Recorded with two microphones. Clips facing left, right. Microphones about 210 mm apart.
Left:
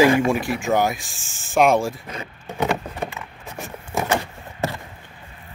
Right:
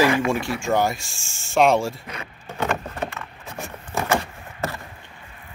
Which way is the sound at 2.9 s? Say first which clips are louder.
Even; 10° left (ahead or behind).